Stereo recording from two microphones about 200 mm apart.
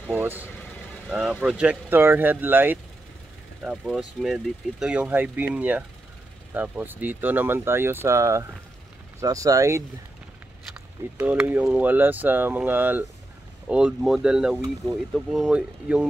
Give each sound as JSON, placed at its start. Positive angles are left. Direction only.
{"t": 0.1, "sound": "speech", "side_deg": -10}
{"t": 11.1, "sound": "speech", "side_deg": -10}